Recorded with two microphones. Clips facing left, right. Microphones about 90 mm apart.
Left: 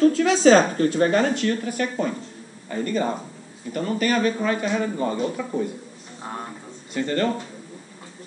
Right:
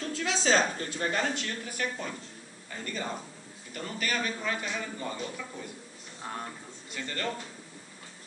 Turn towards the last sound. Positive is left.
turn(degrees=40)  # may be behind; listen again after turning